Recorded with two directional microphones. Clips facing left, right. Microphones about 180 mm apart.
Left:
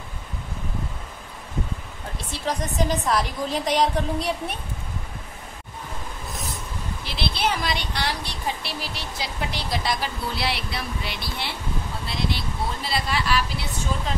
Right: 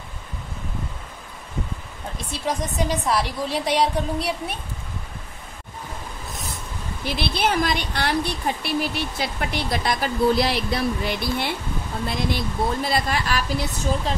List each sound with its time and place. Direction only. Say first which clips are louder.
2.9 s a woman's voice: right 1 dB; 5° right (ahead or behind)
7.1 s speech: right 3 dB; 50° right (ahead or behind)